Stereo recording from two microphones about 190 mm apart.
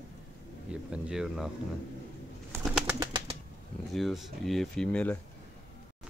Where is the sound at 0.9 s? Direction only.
5° right (ahead or behind).